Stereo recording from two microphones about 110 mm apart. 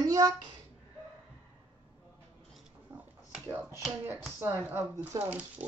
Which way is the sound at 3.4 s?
25° right (ahead or behind).